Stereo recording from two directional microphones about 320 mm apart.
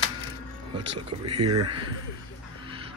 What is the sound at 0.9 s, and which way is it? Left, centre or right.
Speech, right.